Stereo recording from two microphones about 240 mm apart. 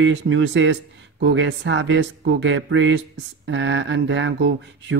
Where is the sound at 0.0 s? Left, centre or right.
Right.